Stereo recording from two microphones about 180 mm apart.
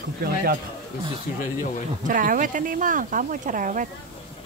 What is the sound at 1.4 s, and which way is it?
Speech, 45° left (ahead or behind).